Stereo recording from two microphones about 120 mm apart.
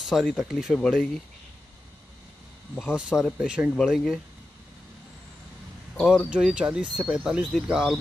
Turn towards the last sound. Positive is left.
turn(degrees=-5)  # may be behind; listen again after turning